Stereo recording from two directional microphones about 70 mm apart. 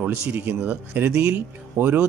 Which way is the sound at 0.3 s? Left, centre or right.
Right.